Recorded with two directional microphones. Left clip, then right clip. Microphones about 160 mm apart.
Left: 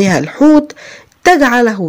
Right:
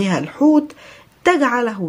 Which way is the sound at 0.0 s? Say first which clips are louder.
Left 7 dB; 35° left (ahead or behind).